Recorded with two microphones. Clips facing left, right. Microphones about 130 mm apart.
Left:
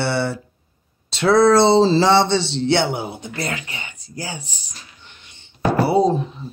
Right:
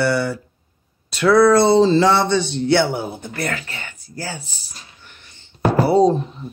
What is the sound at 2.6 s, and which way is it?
Speech, 20° left (ahead or behind).